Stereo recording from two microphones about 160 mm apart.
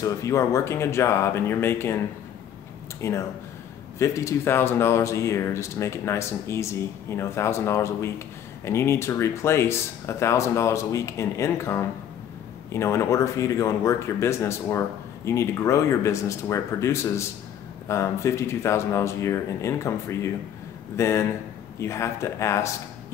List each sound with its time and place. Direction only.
0.0 s speech: 20° left (ahead or behind)
3.0 s speech: 20° left (ahead or behind)